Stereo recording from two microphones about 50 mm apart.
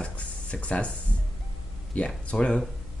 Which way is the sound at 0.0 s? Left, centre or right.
Left.